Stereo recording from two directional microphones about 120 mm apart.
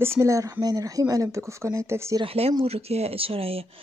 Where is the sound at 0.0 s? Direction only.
20° right (ahead or behind).